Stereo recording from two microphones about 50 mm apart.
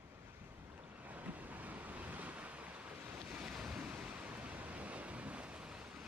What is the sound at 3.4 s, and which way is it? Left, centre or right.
Waves, centre.